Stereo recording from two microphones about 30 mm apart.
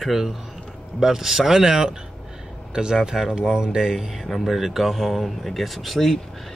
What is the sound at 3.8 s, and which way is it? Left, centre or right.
Speech, centre.